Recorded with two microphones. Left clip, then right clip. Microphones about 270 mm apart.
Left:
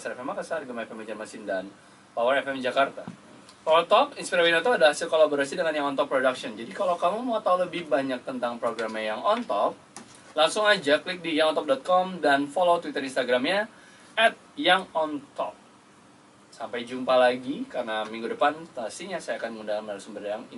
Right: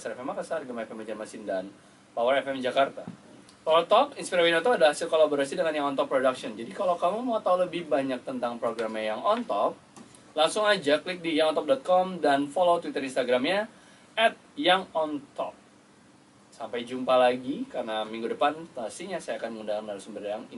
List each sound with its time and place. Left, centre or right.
0.0 s speech: centre
6.8 s a man's voice: right
7.4 s speech: centre
16.7 s speech: centre